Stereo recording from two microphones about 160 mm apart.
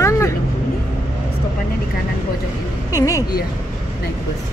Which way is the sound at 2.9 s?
20° left (ahead or behind).